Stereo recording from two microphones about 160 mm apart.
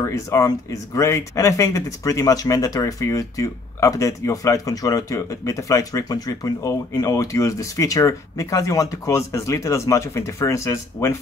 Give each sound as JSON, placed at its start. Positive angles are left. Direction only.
{"t": 0.0, "sound": "speech", "side_deg": 15}